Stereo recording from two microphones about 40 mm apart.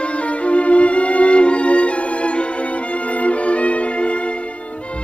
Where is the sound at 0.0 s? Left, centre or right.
Left.